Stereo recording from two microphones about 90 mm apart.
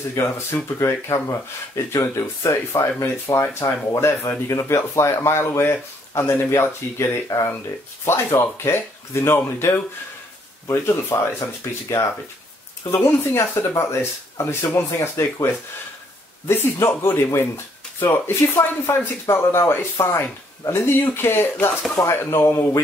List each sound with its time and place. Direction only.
0.1 s speech: 30° left (ahead or behind)
12.9 s speech: 30° left (ahead or behind)